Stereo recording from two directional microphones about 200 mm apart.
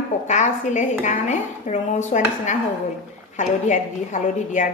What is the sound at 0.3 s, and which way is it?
Speech, 35° left (ahead or behind).